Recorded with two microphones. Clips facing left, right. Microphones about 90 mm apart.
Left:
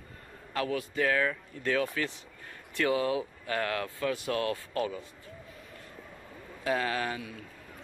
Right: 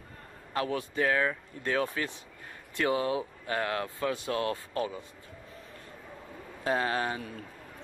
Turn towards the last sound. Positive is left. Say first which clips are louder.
# right 2 dB
turn(degrees=-35)  # may be behind; listen again after turning